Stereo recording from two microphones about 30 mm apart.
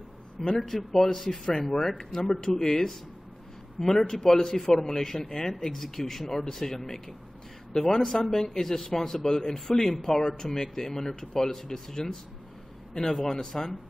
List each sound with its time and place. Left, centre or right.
0.4 s a man's voice: centre
3.8 s a man's voice: centre
4.1 s a man's voice: centre
13.2 s speech: left
13.5 s a man's voice: centre